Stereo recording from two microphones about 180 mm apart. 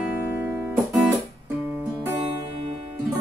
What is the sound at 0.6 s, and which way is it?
Guitar, centre (ahead or behind).